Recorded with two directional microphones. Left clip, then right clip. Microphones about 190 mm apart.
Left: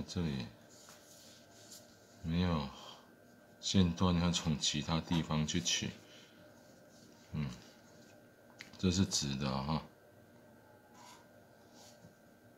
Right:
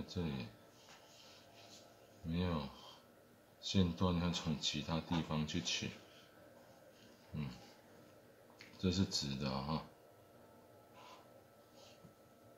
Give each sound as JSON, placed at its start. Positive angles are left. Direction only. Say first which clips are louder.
{"t": 0.0, "sound": "speech", "louder": "left 3 dB", "side_deg": 15}
{"t": 2.2, "sound": "speech", "louder": "left 4 dB", "side_deg": 20}
{"t": 7.3, "sound": "speech", "louder": "left 4 dB", "side_deg": 20}
{"t": 8.7, "sound": "speech", "louder": "left 3 dB", "side_deg": 20}